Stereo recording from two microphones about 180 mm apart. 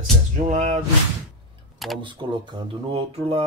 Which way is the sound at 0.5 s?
40° right (ahead or behind).